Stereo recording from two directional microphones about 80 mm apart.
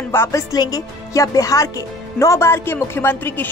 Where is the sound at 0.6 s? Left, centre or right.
Left.